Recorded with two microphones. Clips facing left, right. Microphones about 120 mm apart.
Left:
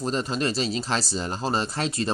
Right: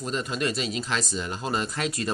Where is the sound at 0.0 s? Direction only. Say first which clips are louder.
Left 2 dB; 30° left (ahead or behind).